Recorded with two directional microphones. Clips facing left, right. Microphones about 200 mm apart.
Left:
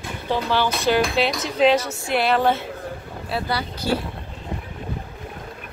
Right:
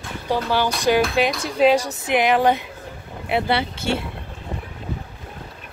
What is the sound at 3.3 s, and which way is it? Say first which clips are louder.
Speech: right 5 dB; 25° right (ahead or behind).